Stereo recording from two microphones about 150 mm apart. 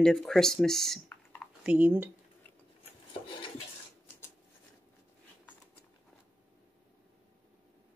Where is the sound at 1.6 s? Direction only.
10° right (ahead or behind).